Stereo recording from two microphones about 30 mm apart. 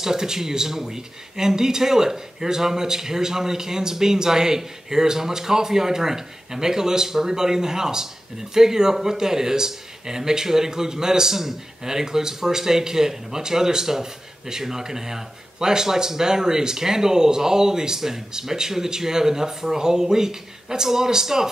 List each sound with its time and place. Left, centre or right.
0.0 s speech: centre